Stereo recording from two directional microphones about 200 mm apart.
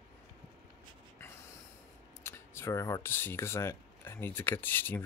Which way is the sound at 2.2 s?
10° left (ahead or behind).